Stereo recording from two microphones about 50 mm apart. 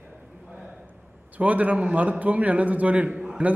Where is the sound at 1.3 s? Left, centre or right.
Right.